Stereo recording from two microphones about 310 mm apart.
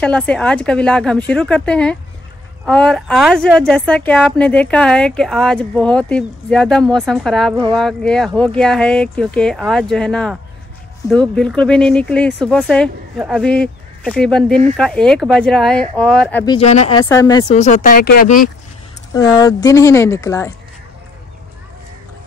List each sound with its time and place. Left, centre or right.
0.0 s speech: centre
16.5 s speech: left
17.0 s speech: centre
17.5 s speech: left
19.1 s speech: centre